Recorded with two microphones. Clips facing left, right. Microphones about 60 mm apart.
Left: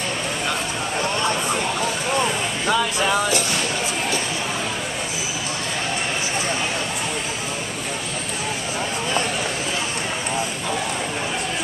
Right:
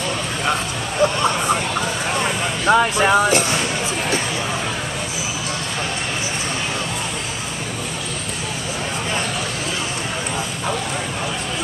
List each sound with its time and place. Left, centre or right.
2.6 s speech: right